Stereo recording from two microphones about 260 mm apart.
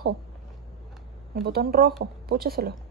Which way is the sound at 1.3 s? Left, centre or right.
Right.